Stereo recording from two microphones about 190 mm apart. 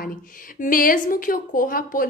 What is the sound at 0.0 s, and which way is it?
A woman's voice, 45° left (ahead or behind).